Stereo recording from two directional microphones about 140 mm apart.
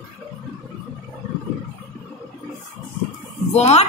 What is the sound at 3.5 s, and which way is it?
Speech, 50° left (ahead or behind).